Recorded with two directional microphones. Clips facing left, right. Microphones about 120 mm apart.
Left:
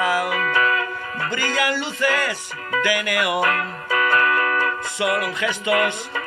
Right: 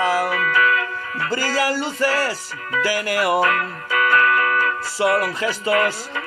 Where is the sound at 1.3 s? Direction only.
35° right (ahead or behind).